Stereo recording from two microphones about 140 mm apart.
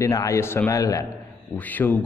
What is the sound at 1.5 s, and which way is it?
Speech, 10° left (ahead or behind).